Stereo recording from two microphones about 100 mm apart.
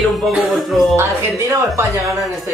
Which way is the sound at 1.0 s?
30° right (ahead or behind).